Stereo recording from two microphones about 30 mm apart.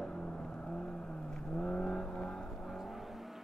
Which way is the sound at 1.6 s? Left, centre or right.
Left.